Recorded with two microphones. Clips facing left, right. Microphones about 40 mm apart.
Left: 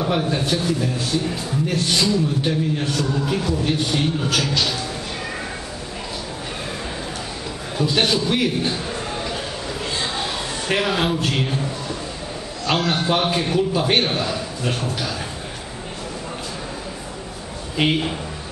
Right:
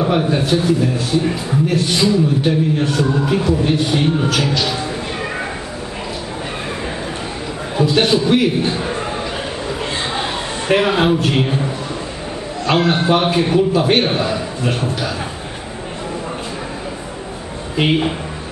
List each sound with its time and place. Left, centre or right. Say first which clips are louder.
0.0 s a man's voice: right 5 dB; centre
7.8 s a man's voice: right 5 dB; centre
9.7 s a sound: right 3 dB; right
10.7 s a man's voice: right 7 dB; centre
17.7 s a man's voice: right 4 dB; centre